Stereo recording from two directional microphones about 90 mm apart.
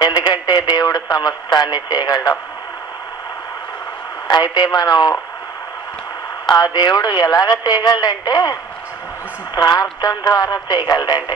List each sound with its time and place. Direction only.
0.0 s speech: 50° left (ahead or behind)
4.3 s speech: 55° left (ahead or behind)
6.5 s speech: 50° left (ahead or behind)
9.6 s speech: 50° left (ahead or behind)